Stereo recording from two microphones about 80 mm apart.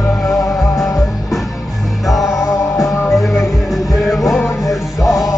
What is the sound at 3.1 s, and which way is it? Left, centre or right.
Music, centre.